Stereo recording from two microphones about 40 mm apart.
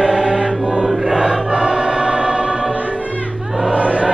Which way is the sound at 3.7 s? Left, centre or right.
Right.